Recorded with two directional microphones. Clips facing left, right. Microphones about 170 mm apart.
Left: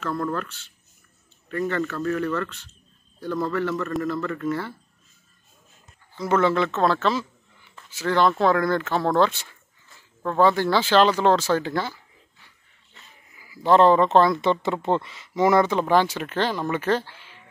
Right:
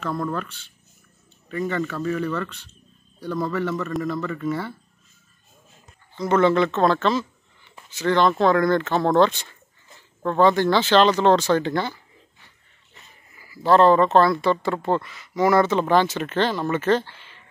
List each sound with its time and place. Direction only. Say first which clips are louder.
0.0 s speech: even; centre (ahead or behind)
6.1 s a woman's voice: right 3 dB; 5° left (ahead or behind)
13.5 s a woman's voice: right 1 dB; 15° left (ahead or behind)